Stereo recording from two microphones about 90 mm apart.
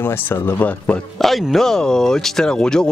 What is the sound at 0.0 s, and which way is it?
Speech, 25° left (ahead or behind).